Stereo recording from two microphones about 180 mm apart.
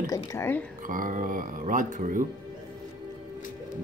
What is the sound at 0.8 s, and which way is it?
Speech, 50° right (ahead or behind).